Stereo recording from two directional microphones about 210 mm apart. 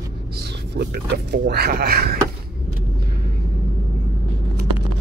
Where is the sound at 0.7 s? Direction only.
50° right (ahead or behind).